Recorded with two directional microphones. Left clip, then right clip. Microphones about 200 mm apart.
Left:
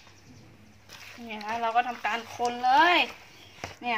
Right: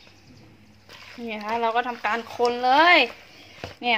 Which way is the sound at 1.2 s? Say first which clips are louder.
Right 5 dB; 55° right (ahead or behind).